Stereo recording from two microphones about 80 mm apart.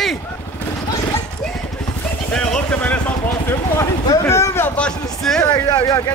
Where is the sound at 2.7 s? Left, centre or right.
Centre.